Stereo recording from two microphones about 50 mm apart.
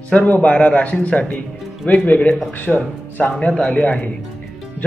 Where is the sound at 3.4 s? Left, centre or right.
Left.